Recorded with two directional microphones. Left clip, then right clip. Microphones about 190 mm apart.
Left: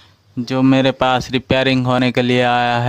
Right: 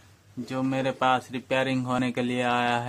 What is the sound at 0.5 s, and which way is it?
Speech, 50° left (ahead or behind).